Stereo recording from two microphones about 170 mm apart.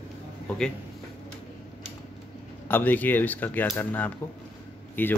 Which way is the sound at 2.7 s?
10° left (ahead or behind).